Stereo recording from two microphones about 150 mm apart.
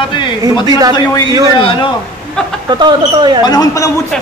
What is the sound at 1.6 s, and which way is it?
Speech, 35° left (ahead or behind).